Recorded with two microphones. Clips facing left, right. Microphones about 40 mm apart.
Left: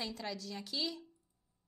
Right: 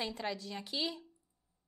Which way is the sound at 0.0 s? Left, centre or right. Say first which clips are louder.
Right 3 dB; right.